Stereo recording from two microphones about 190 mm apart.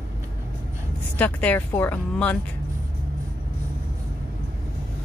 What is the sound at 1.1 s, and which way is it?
Speech, 10° left (ahead or behind).